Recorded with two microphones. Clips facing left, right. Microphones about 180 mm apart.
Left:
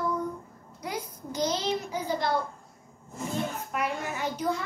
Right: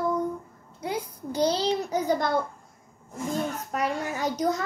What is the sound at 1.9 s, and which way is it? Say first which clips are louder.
Speech: right 5 dB; 45° right (ahead or behind).